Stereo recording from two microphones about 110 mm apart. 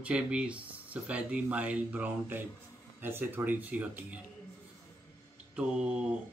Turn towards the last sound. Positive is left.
turn(degrees=-10)  # may be behind; listen again after turning